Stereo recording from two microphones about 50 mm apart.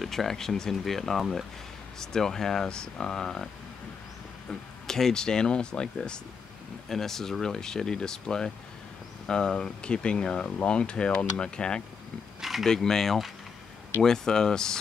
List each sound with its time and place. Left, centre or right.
0.0 s speech: centre
4.5 s speech: centre
12.4 s a sound: centre
12.6 s speech: centre